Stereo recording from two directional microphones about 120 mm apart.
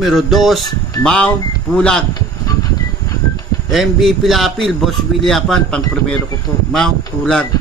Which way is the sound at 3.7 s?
Centre (ahead or behind).